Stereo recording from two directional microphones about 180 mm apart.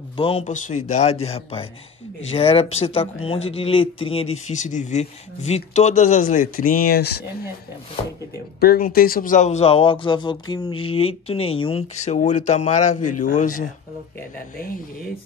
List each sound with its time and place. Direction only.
0.2 s speech: 35° left (ahead or behind); by 7.2 s 60° left (ahead or behind)
8.5 s speech: 55° left (ahead or behind)